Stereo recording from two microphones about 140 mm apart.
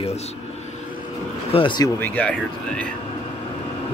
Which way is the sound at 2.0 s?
10° left (ahead or behind).